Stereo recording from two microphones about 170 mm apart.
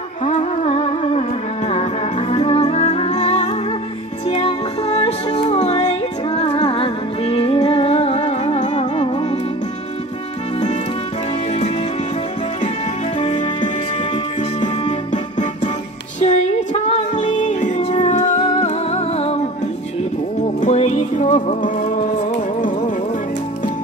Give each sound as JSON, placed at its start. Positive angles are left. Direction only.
{"t": 0.2, "sound": "music", "side_deg": 40}
{"t": 13.2, "sound": "music", "side_deg": 45}
{"t": 20.4, "sound": "music", "side_deg": 40}